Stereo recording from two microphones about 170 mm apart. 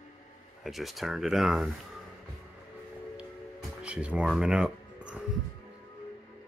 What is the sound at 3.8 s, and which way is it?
Speech, 5° right (ahead or behind).